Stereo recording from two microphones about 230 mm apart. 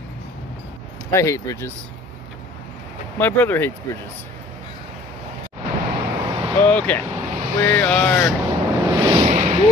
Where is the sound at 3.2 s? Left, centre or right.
Centre.